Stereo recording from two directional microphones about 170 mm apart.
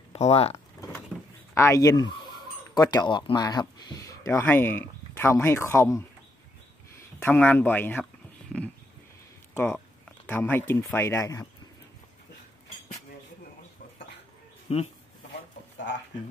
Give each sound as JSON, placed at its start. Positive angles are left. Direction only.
{"t": 0.1, "sound": "speech", "side_deg": 35}
{"t": 1.1, "sound": "a sound", "side_deg": 5}
{"t": 1.5, "sound": "fowl", "side_deg": 15}
{"t": 3.1, "sound": "speech", "side_deg": 30}
{"t": 7.2, "sound": "speech", "side_deg": 10}
{"t": 8.0, "sound": "a sound", "side_deg": 5}
{"t": 10.7, "sound": "speech", "side_deg": 15}
{"t": 14.7, "sound": "speech", "side_deg": 35}